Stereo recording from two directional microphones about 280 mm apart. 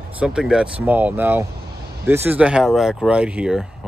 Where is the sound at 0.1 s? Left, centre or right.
Centre.